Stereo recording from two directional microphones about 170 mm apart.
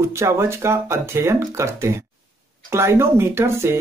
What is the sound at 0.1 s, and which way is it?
Speech, 15° right (ahead or behind).